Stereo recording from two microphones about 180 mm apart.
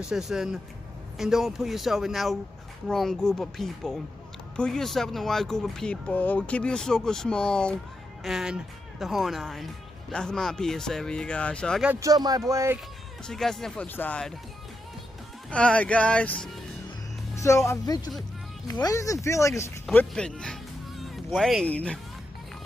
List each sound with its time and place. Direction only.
0.1 s speech: 5° right (ahead or behind)
11.9 s speech: 20° right (ahead or behind)
13.3 s speech: centre (ahead or behind)
15.5 s speech: 5° left (ahead or behind)
17.4 s speech: 15° left (ahead or behind)